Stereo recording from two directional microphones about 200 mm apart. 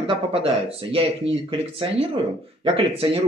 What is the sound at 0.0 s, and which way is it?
A man's voice, 25° right (ahead or behind).